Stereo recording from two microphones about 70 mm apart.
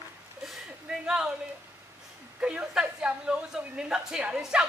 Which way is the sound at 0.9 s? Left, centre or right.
Centre.